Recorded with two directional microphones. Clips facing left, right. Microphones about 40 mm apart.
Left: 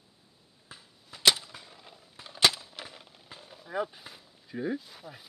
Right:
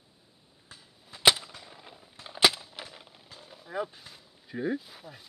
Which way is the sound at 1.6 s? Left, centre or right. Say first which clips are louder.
Right 2 dB; centre.